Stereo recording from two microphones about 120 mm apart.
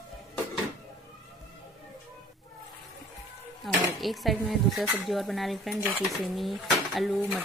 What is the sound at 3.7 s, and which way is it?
Speech, centre (ahead or behind).